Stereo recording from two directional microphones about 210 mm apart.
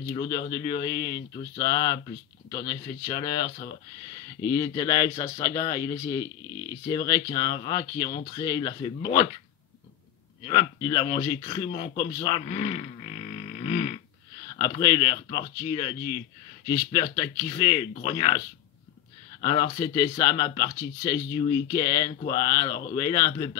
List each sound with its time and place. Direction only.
0.0 s speech: 20° left (ahead or behind)
10.4 s speech: 20° left (ahead or behind)
19.4 s speech: 20° left (ahead or behind)